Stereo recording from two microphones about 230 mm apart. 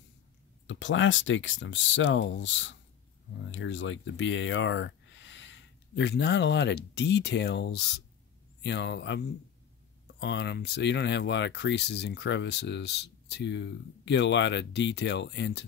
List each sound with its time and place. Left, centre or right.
0.7 s speech: left